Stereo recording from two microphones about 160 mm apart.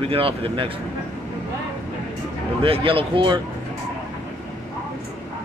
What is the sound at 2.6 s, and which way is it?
Speech, 35° right (ahead or behind).